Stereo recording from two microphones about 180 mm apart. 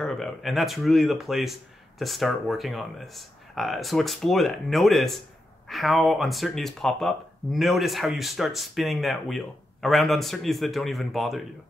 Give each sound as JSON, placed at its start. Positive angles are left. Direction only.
{"t": 0.0, "sound": "speech", "side_deg": 0}